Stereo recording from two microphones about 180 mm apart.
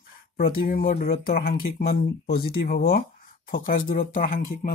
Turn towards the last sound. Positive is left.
turn(degrees=50)  # may be behind; listen again after turning